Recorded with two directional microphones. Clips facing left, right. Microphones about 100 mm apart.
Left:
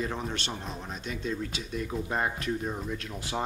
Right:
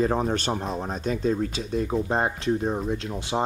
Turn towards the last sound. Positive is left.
turn(degrees=-25)  # may be behind; listen again after turning